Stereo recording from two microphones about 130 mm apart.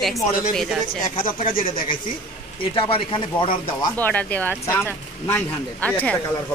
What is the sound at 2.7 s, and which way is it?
Speech, 45° left (ahead or behind).